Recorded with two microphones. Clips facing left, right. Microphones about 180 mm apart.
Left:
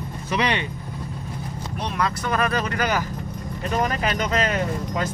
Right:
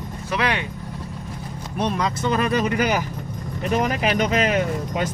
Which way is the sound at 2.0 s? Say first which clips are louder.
Left 2 dB; 20° right (ahead or behind).